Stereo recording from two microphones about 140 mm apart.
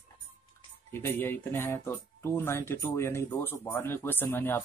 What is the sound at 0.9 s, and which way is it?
Speech, 15° left (ahead or behind).